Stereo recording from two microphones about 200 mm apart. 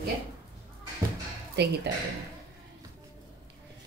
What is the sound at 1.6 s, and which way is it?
Speech, 55° right (ahead or behind).